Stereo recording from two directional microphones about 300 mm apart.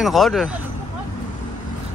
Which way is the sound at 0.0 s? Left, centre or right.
Centre.